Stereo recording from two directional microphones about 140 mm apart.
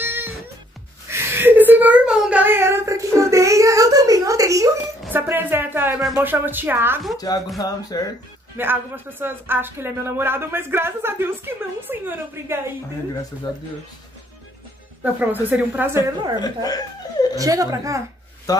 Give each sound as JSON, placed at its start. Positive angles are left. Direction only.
{"t": 0.0, "sound": "music", "side_deg": -15}
{"t": 1.0, "sound": "a sound", "side_deg": -20}
{"t": 5.1, "sound": "music", "side_deg": -15}
{"t": 6.1, "sound": "speech", "side_deg": -15}
{"t": 7.5, "sound": "speech", "side_deg": 25}
{"t": 8.5, "sound": "speech", "side_deg": -15}
{"t": 15.5, "sound": "speech", "side_deg": -15}
{"t": 16.0, "sound": "speech", "side_deg": 30}
{"t": 17.4, "sound": "a woman's voice", "side_deg": -25}
{"t": 18.5, "sound": "speech", "side_deg": 25}